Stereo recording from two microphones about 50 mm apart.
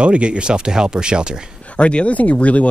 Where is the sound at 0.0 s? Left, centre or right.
Right.